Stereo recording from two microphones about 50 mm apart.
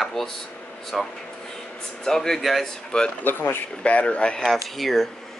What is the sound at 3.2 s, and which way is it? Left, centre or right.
Speech, left.